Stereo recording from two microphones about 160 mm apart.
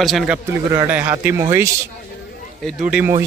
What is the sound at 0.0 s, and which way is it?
Speech, centre (ahead or behind).